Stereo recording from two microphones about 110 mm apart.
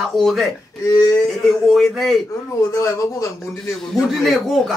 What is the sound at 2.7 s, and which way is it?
Speech, 30° left (ahead or behind).